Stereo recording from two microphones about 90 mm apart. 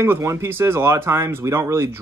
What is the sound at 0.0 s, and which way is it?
Speech, 30° right (ahead or behind).